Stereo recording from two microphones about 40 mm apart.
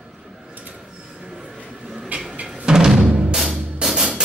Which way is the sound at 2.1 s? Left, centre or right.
Right.